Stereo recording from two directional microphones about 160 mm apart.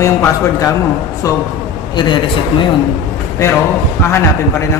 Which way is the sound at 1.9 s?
30° left (ahead or behind).